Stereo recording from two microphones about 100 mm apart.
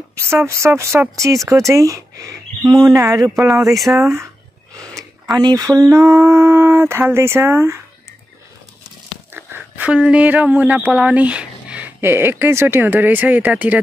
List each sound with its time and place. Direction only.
0.5 s speech: 30° right (ahead or behind)
3.3 s speech: 5° right (ahead or behind)
4.0 s speech: 30° right (ahead or behind)
5.3 s speech: 40° right (ahead or behind); by 7.8 s 25° right (ahead or behind)
9.3 s speech: 15° right (ahead or behind)